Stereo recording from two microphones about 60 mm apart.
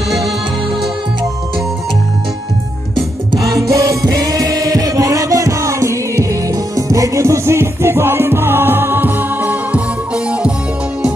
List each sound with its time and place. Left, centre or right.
3.3 s music: right; by 10.5 s centre